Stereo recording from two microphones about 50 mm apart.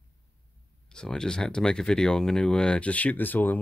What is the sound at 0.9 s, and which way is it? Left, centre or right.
Speech, centre.